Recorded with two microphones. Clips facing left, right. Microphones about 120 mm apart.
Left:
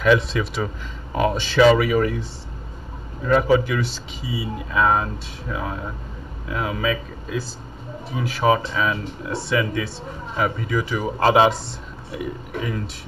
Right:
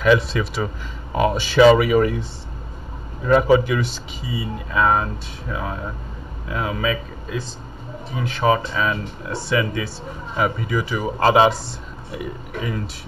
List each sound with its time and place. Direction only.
0.0 s speech: centre (ahead or behind)
3.3 s speech: 20° right (ahead or behind)
4.2 s speech: 5° left (ahead or behind)